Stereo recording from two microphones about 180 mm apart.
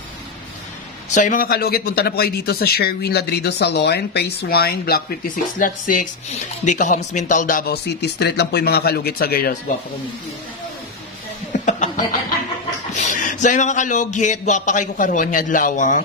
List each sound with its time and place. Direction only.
1.1 s speech: 45° left (ahead or behind)
11.5 s chuckle: 45° left (ahead or behind)
12.9 s speech: 45° left (ahead or behind)